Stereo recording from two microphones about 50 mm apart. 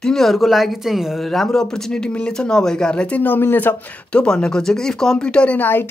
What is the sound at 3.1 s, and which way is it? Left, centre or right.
Speech, left.